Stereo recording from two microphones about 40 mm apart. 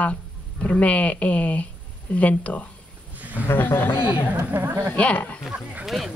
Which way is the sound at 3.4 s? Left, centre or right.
Left.